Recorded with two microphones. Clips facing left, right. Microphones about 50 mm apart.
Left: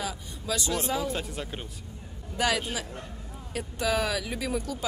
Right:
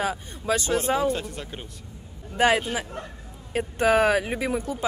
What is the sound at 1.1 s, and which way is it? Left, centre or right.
Speech, centre.